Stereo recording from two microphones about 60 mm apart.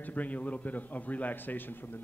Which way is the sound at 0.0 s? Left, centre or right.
Left.